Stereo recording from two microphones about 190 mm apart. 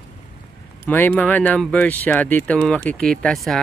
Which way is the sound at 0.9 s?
10° left (ahead or behind).